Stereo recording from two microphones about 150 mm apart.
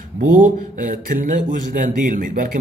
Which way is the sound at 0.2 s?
55° right (ahead or behind).